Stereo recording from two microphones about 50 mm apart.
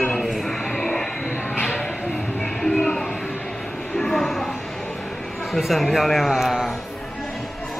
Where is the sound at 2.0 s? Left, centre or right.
Left.